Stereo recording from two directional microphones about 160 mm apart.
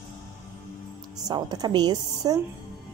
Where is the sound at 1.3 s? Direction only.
25° right (ahead or behind).